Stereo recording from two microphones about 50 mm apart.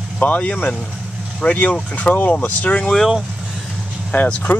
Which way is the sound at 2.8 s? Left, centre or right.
Centre.